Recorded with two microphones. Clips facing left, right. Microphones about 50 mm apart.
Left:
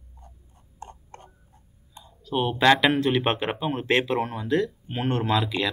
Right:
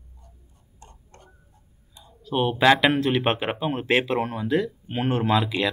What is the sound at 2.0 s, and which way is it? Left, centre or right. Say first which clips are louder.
Speech: right 2 dB; centre.